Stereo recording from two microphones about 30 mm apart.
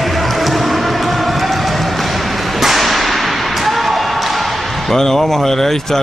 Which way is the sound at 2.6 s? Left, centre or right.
Centre.